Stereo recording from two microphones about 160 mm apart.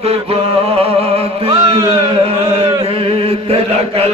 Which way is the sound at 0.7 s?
35° right (ahead or behind).